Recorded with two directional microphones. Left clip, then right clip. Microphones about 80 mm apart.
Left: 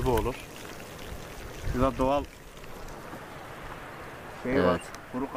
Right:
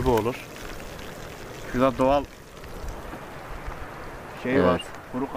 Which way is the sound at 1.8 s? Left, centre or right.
Right.